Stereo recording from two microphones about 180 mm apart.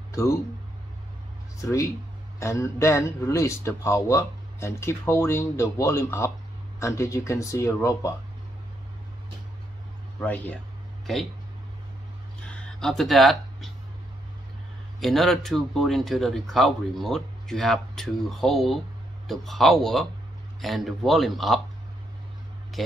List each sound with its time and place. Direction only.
0.1 s speech: 15° left (ahead or behind)
2.4 s speech: 15° left (ahead or behind)
10.2 s speech: 10° left (ahead or behind)
12.4 s a sound: 5° left (ahead or behind)
15.0 s speech: centre (ahead or behind)
22.8 s speech: centre (ahead or behind)